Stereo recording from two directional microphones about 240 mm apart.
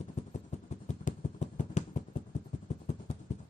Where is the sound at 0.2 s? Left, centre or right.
Left.